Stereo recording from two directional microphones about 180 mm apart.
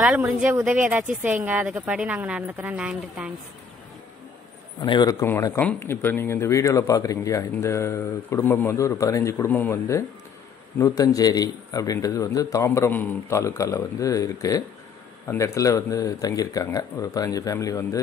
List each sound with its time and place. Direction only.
0.0 s speech: 10° right (ahead or behind)
4.7 s a man's voice: 25° left (ahead or behind)